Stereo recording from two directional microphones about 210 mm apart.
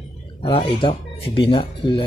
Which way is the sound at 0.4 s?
25° left (ahead or behind).